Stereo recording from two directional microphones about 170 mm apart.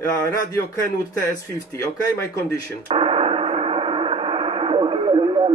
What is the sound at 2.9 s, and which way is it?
Gong, 35° right (ahead or behind).